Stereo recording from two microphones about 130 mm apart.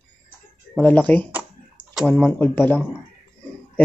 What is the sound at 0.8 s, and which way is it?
Speech, 10° left (ahead or behind).